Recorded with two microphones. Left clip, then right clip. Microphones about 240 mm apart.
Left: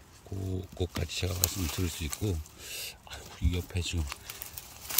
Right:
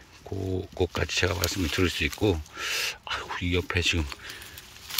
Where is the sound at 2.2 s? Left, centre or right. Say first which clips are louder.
Right 11 dB; right.